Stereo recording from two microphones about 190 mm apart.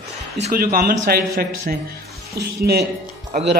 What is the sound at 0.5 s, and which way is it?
Speech, 50° right (ahead or behind).